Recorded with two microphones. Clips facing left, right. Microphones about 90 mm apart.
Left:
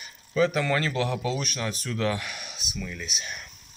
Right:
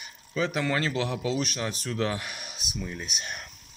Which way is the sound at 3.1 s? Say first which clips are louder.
Even; 50° right (ahead or behind).